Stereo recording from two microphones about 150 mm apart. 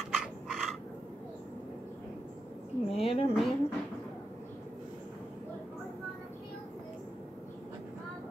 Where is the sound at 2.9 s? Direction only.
40° left (ahead or behind).